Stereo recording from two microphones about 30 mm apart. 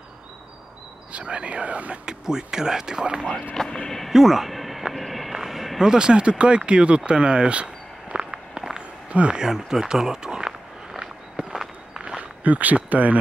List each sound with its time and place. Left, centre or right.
1.1 s speech: right
2.0 s speech: right
3.6 s speech: centre
4.1 s speech: centre
4.6 s a sound: centre
4.9 s walk: centre
5.3 s a sound: centre
5.8 s speech: right
7.1 s walk: right
9.1 s speech: right
9.5 s run: centre
11.4 s walk: right
12.2 s speech: right